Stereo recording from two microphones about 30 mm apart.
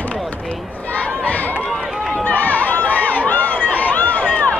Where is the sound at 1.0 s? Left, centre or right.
Left.